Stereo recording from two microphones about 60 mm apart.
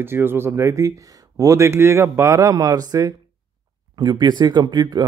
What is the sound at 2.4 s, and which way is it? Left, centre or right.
Speech, right.